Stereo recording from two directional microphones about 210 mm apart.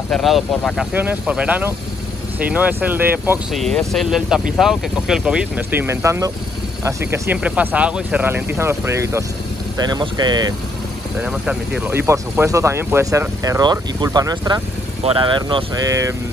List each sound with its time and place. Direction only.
0.1 s speech: centre (ahead or behind)
3.6 s speech: centre (ahead or behind); by 10.5 s 20° right (ahead or behind)
11.2 s speech: 5° right (ahead or behind)